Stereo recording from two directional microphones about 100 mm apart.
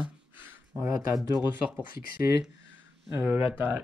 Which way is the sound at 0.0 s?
20° right (ahead or behind).